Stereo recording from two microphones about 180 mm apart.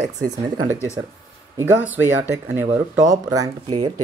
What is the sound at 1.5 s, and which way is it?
Speech, 10° right (ahead or behind).